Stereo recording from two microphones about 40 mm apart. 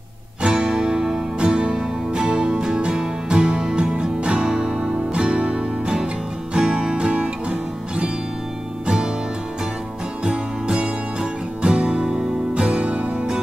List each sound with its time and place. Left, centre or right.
0.4 s music: right
10.2 s music: right